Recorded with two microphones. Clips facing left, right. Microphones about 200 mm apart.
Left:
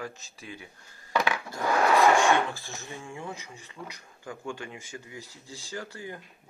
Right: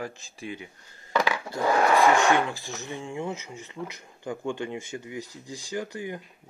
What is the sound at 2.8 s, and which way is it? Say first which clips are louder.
Speech: right 6 dB; 20° right (ahead or behind).